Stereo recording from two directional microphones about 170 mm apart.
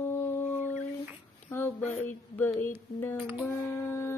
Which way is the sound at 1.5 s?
15° left (ahead or behind).